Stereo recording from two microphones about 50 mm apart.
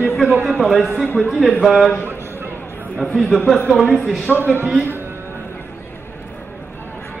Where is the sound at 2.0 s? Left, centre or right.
Right.